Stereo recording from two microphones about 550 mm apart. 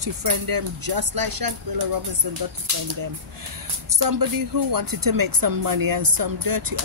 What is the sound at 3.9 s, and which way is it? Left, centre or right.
Speech, right.